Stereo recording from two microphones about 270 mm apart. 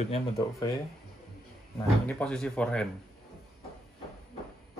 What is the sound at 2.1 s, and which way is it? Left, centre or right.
Speech, centre.